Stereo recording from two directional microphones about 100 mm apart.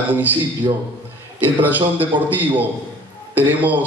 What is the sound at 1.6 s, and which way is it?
A man's voice, 15° right (ahead or behind).